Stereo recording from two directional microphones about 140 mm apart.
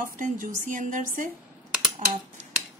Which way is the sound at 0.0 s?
70° right (ahead or behind).